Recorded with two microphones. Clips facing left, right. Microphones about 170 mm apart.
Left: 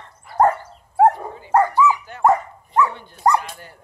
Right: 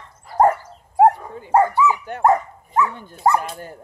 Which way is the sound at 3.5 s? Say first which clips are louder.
Right 6 dB; 45° right (ahead or behind).